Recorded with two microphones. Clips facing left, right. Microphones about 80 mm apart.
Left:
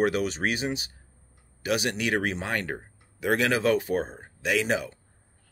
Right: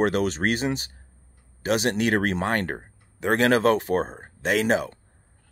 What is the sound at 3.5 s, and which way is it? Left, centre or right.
Speech, right.